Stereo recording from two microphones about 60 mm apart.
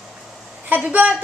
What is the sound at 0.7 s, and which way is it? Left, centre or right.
Speech, right.